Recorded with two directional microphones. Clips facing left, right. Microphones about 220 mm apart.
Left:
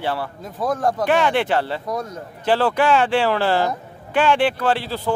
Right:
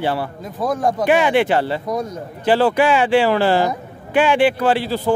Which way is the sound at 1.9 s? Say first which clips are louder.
Right 4 dB; 15° right (ahead or behind).